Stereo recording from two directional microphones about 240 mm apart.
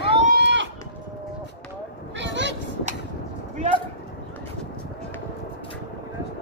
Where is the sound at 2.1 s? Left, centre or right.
Right.